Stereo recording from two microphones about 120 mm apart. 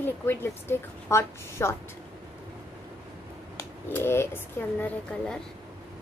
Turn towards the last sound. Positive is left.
turn(degrees=10)  # may be behind; listen again after turning